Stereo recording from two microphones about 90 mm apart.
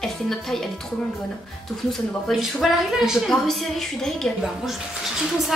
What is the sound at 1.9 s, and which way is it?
Speech, centre (ahead or behind).